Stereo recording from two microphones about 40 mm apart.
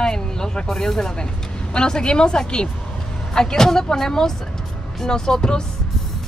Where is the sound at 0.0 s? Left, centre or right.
Centre.